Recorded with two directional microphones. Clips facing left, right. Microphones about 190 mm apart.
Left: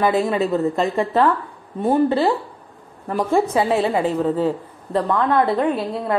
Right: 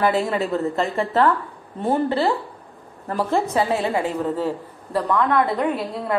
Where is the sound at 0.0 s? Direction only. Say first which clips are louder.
Left 2 dB; 20° left (ahead or behind).